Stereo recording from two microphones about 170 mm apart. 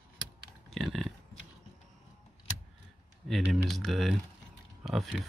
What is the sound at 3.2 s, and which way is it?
Speech, centre (ahead or behind).